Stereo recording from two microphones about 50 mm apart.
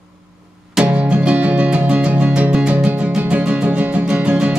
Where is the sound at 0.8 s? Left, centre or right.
Right.